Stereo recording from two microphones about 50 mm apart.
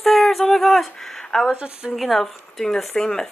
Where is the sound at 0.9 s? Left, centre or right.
Centre.